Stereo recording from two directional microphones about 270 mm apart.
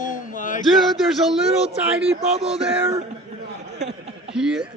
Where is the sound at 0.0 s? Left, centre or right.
Left.